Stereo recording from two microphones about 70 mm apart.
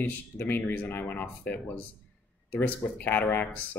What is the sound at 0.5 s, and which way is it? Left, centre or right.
Speech, left.